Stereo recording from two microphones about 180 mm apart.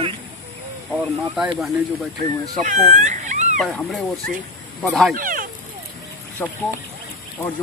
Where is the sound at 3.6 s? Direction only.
5° left (ahead or behind).